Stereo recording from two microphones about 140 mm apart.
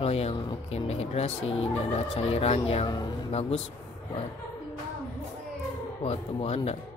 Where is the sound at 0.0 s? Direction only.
45° left (ahead or behind).